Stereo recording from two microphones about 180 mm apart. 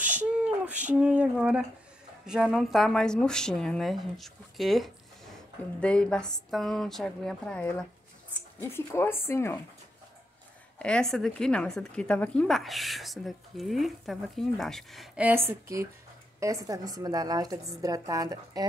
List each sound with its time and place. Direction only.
0.0 s a sound: 10° right (ahead or behind)
2.2 s a woman's voice: 5° right (ahead or behind); by 9.6 s 15° left (ahead or behind)
10.8 s a woman's voice: 5° left (ahead or behind); by 18.7 s 20° right (ahead or behind)